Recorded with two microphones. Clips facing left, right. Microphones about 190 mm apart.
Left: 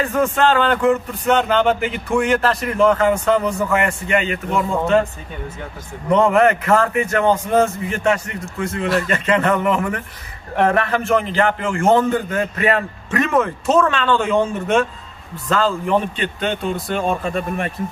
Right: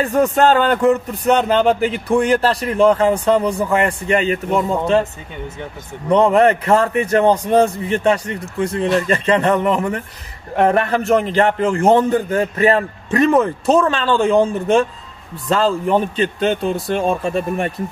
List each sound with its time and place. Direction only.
0.0 s a man's voice: 40° right (ahead or behind)
6.0 s a man's voice: 30° right (ahead or behind)
11.0 s a man's voice: 40° right (ahead or behind)
17.1 s a man's voice: 30° right (ahead or behind)